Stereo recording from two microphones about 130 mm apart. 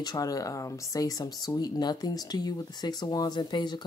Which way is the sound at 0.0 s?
30° left (ahead or behind).